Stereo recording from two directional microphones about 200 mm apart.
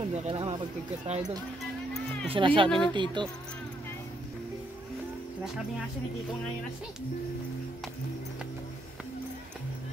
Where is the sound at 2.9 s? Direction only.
25° right (ahead or behind).